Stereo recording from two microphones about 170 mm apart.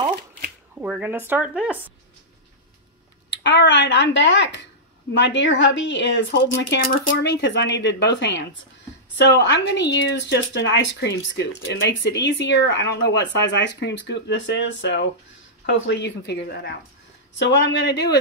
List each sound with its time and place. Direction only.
0.7 s speech: 10° right (ahead or behind)
3.3 s a woman's voice: 90° left